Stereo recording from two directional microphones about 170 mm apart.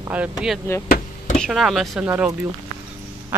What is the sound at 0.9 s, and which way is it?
Chop, 50° left (ahead or behind).